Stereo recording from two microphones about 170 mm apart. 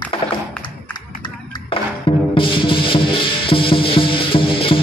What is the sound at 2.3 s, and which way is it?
Music, 30° left (ahead or behind).